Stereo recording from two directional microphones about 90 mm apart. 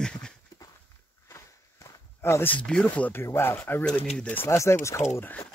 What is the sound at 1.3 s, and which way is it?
Walk, 35° left (ahead or behind).